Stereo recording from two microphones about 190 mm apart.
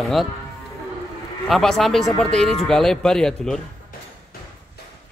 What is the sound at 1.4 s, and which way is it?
Speech, centre (ahead or behind).